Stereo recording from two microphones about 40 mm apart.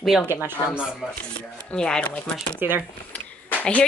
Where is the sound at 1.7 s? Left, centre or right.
Centre.